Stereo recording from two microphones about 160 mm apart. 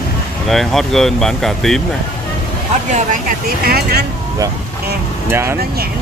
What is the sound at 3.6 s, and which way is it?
Speech, 75° right (ahead or behind).